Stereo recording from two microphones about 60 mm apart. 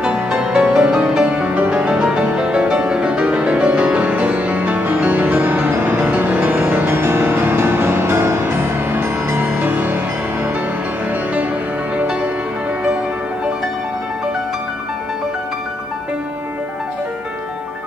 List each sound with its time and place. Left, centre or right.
0.0 s music: centre; by 6.6 s right
6.9 s music: right